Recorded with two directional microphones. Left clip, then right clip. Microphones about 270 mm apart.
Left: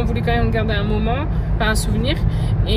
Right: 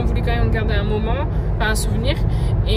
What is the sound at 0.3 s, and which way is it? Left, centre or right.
A woman's voice, centre.